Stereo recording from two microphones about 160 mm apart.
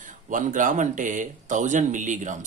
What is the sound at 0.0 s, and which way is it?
Speech, 55° right (ahead or behind).